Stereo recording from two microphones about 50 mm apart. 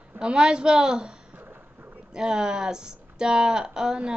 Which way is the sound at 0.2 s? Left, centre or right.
Centre.